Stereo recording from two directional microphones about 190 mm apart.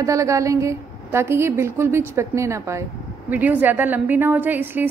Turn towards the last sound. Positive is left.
turn(degrees=-10)  # may be behind; listen again after turning